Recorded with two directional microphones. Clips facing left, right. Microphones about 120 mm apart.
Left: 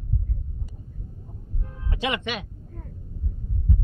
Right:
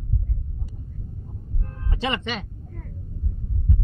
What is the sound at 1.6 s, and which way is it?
Vehicle, 5° left (ahead or behind).